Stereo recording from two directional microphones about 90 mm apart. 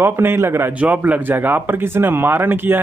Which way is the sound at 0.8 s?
20° right (ahead or behind).